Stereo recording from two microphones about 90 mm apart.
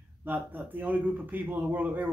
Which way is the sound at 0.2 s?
20° right (ahead or behind).